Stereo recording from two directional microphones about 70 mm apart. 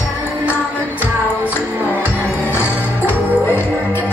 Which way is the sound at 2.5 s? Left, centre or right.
Left.